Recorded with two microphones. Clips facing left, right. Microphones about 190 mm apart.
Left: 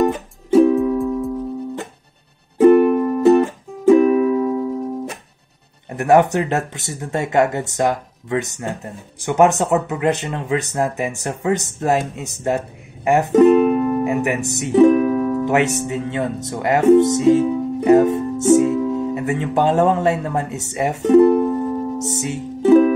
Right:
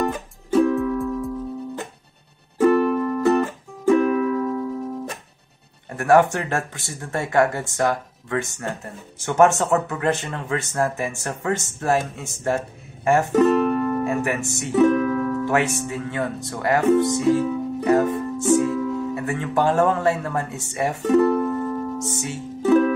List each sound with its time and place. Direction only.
0.7 s music: 20° left (ahead or behind)
2.6 s music: 20° left (ahead or behind)
5.9 s speech: 20° left (ahead or behind)